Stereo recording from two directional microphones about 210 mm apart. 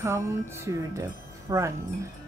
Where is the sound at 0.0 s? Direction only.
15° right (ahead or behind).